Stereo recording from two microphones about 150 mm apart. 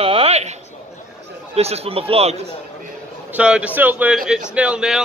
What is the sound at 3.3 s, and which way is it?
Speech, 10° right (ahead or behind).